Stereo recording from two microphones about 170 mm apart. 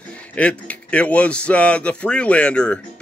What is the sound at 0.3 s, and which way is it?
A man's voice, 5° left (ahead or behind).